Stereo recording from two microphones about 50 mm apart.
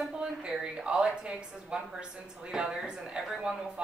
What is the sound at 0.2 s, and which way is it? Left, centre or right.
A woman's voice, centre.